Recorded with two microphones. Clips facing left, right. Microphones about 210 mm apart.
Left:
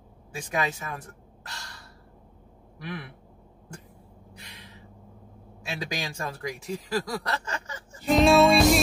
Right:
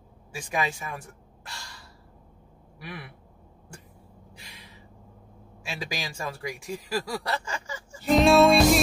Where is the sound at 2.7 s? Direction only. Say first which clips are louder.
Left 4 dB; 5° right (ahead or behind).